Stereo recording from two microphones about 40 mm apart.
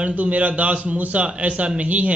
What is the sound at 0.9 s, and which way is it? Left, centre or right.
A man's voice, right.